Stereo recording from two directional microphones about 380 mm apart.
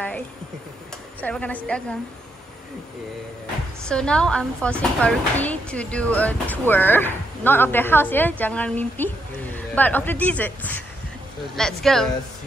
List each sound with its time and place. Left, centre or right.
1.2 s speech: centre
3.9 s speech: centre